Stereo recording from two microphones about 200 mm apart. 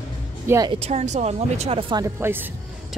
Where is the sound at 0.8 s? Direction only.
35° right (ahead or behind).